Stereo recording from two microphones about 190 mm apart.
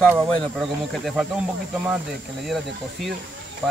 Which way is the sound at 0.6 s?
Centre (ahead or behind).